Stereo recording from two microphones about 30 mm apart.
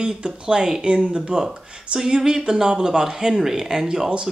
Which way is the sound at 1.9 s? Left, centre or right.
Right.